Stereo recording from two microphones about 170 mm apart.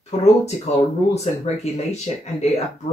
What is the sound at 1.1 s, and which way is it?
Speech, 40° left (ahead or behind).